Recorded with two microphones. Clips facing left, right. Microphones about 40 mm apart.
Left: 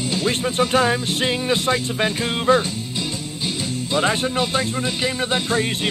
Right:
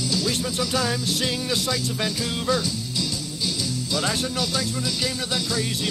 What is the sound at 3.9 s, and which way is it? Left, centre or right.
Speech, left.